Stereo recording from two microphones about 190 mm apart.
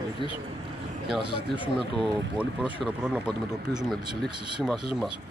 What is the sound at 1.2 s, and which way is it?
Speech, 25° right (ahead or behind).